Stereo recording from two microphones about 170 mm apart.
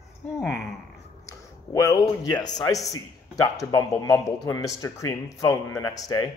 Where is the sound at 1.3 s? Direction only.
20° left (ahead or behind).